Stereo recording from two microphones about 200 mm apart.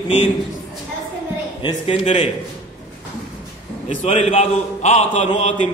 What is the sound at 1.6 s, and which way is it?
Speech, 25° left (ahead or behind).